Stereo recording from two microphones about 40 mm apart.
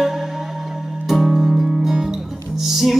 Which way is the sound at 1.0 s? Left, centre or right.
Centre.